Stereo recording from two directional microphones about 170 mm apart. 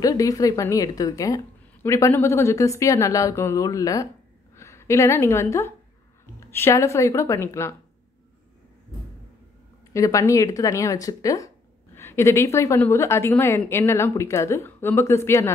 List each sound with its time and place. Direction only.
0.0 s a woman's voice: 20° left (ahead or behind)
9.9 s speech: 20° left (ahead or behind)